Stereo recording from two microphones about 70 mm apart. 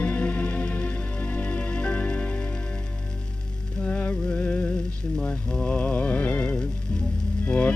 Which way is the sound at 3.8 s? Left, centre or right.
Left.